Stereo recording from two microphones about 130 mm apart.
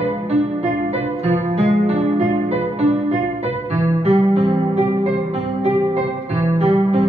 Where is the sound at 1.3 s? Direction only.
55° right (ahead or behind).